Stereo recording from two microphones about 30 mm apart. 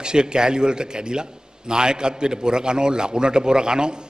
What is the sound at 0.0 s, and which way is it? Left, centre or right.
A man's voice, right.